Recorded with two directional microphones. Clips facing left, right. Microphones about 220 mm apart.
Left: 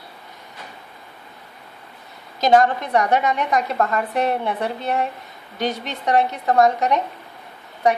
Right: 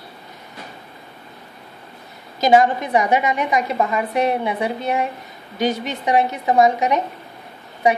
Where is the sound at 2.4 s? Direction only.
5° right (ahead or behind).